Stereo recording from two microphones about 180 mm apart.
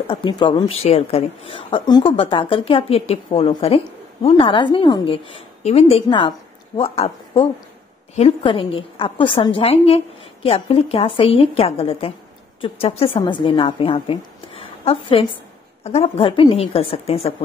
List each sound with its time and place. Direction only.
0.1 s a woman's voice: 30° left (ahead or behind)